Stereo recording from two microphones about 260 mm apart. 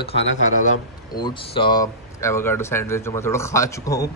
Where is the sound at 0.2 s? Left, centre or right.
Left.